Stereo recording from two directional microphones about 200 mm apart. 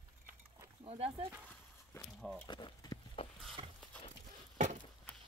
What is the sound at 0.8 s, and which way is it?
Speech, 30° right (ahead or behind).